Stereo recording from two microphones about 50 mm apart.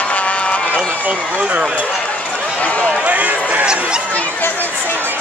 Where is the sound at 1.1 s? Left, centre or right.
Right.